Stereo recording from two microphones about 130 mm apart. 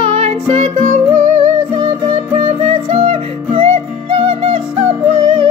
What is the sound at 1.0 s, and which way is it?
Music, 40° right (ahead or behind).